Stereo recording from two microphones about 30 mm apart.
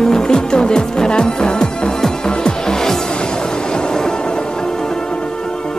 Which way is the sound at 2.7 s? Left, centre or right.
Centre.